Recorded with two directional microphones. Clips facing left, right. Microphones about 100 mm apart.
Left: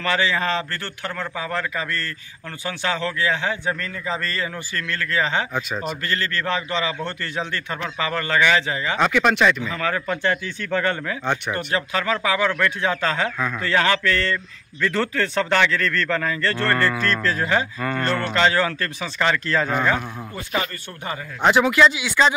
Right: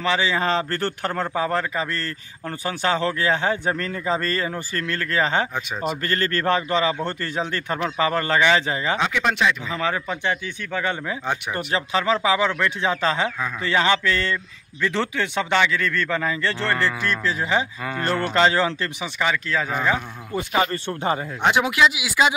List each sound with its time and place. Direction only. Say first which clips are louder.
0.0 s a man's voice: even; 20° right (ahead or behind)
5.5 s speech: even; 5° right (ahead or behind)
6.0 s a man's voice: right 4 dB; 40° right (ahead or behind)
9.1 s speech: left 3 dB; 75° left (ahead or behind)
9.6 s a man's voice: even; 25° right (ahead or behind)
18.3 s a man's voice: right 1 dB; 25° right (ahead or behind); by 20.0 s 5° right (ahead or behind)
20.3 s speech: right 5 dB; 20° right (ahead or behind)
21.5 s a man's voice: left 3 dB; 5° right (ahead or behind)